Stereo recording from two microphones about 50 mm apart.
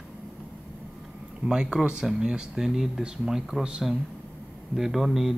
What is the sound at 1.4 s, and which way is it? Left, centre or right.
Speech, centre.